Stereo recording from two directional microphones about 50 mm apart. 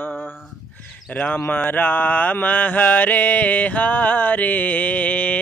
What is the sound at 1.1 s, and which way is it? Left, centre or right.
Speech, left.